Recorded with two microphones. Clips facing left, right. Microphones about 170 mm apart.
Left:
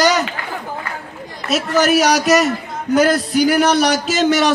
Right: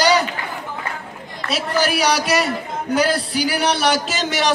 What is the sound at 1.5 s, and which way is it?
A man's voice, 45° left (ahead or behind).